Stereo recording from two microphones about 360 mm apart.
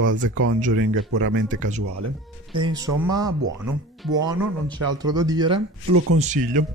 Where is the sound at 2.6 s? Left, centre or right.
Centre.